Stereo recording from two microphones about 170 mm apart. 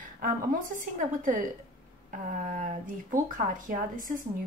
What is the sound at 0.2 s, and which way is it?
A woman's voice, 50° right (ahead or behind).